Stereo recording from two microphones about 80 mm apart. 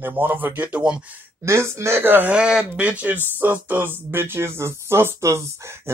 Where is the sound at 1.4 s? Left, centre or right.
Right.